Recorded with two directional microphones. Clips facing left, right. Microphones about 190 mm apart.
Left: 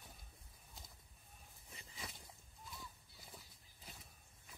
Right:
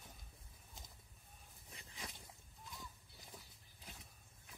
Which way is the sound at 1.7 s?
10° left (ahead or behind).